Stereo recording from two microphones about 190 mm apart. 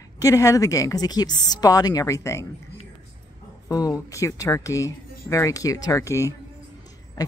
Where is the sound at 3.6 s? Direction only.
20° left (ahead or behind).